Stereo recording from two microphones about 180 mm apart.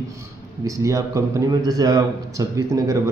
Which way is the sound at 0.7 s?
15° right (ahead or behind).